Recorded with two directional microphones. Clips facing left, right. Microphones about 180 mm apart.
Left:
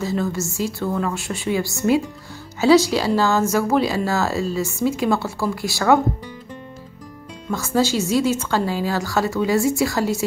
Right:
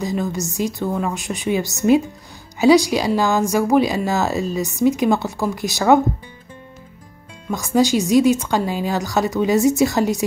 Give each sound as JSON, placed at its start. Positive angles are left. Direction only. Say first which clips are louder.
{"t": 0.0, "sound": "speech", "louder": "even", "side_deg": -15}
{"t": 7.5, "sound": "speech", "louder": "right 3 dB", "side_deg": -15}